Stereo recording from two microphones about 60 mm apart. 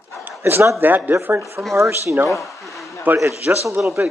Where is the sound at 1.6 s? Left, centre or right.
Right.